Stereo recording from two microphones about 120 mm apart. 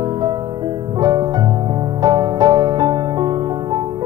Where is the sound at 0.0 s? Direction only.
40° right (ahead or behind).